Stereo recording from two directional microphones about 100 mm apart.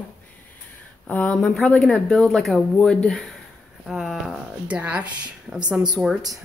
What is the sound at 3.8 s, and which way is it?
Speech, 5° right (ahead or behind).